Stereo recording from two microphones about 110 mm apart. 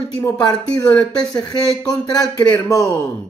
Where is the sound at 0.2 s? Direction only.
40° left (ahead or behind).